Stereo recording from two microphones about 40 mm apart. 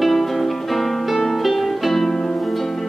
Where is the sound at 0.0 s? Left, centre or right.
Centre.